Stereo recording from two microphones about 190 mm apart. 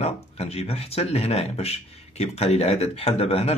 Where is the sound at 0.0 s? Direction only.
35° left (ahead or behind).